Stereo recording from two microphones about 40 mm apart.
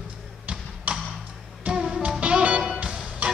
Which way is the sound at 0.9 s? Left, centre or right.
Right.